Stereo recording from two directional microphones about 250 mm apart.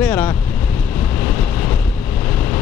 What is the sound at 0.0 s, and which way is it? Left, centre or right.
Vehicle, centre.